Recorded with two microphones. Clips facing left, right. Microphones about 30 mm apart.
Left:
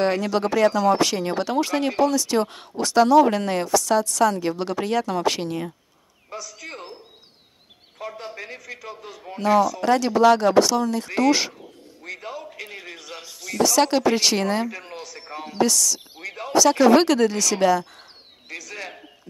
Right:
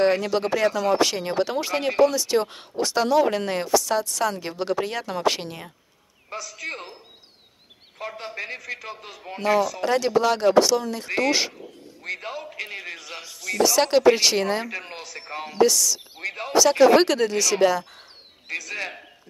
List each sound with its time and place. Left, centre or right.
0.0 s a woman's voice: centre
6.3 s a man's voice: right
8.1 s a man's voice: right
9.0 s a man's voice: right
9.8 s speech: centre
12.0 s a sound: right
12.5 s a sound: right
13.6 s a woman's voice: centre
14.7 s speech: right
15.0 s a sound: right
15.6 s a woman's voice: centre
16.2 s speech: right
16.5 s a woman's voice: centre
18.5 s a man's voice: right